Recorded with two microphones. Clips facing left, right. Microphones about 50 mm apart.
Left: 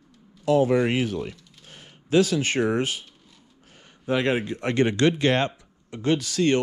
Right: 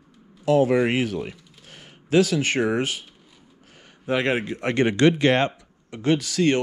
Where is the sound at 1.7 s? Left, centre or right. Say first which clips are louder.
Right 1 dB; right.